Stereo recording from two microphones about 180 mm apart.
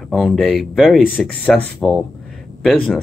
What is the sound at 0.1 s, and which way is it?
Speech, centre (ahead or behind).